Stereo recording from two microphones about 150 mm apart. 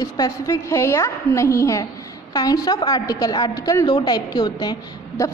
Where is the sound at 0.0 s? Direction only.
25° left (ahead or behind).